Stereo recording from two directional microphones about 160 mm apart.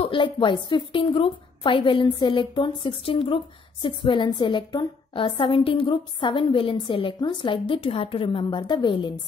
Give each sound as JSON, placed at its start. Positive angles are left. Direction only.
{"t": 0.0, "sound": "a woman's voice", "side_deg": 30}